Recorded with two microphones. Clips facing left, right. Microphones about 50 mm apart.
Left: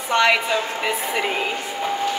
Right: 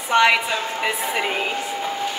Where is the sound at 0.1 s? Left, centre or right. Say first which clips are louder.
Right 1 dB; centre.